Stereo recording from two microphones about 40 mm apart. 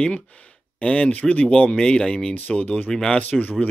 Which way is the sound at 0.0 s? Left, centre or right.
Left.